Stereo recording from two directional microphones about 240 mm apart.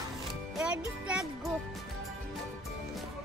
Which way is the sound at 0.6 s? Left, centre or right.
Centre.